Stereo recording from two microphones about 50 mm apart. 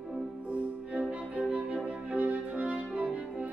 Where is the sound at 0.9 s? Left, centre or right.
Right.